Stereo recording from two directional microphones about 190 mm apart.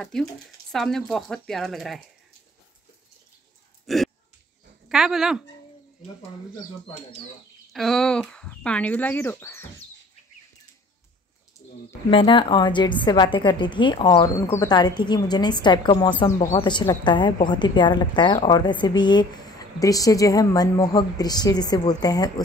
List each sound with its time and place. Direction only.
0.0 s speech: centre (ahead or behind)
3.8 s a sound: centre (ahead or behind)
4.8 s speech: 5° right (ahead or behind)
7.7 s speech: centre (ahead or behind)
12.1 s a woman's voice: 25° left (ahead or behind)